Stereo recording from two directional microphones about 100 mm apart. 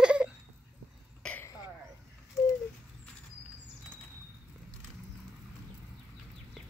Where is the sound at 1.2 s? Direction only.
10° left (ahead or behind).